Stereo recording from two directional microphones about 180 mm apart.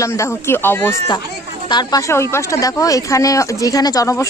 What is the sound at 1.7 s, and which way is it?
Speech, 25° left (ahead or behind).